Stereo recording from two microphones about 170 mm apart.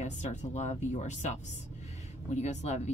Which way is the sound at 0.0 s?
45° left (ahead or behind).